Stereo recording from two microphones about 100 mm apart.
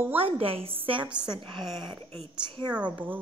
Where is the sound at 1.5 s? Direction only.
Centre (ahead or behind).